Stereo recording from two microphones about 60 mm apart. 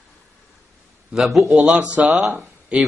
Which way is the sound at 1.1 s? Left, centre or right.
Centre.